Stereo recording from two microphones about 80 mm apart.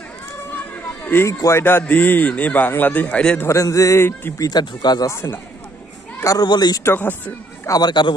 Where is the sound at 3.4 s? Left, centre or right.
Left.